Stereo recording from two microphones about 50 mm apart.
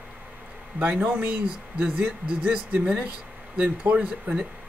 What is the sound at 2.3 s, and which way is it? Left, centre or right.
Speech, centre.